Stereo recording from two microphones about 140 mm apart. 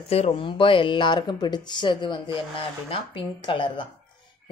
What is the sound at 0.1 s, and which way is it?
A woman's voice, 45° left (ahead or behind).